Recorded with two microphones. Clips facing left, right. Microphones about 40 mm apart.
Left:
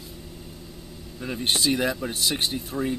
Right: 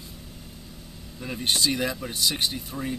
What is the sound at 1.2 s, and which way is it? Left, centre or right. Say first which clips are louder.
Speech: left 2 dB; centre.